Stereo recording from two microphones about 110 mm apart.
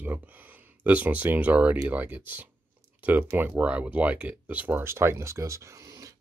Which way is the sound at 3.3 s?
15° right (ahead or behind).